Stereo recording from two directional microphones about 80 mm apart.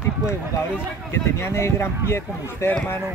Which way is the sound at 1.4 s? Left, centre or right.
Left.